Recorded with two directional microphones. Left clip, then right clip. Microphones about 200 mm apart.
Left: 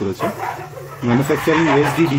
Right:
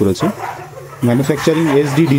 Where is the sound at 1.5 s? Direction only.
30° right (ahead or behind).